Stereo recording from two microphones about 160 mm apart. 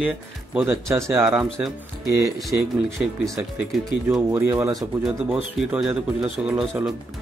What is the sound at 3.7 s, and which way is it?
Speech, centre (ahead or behind).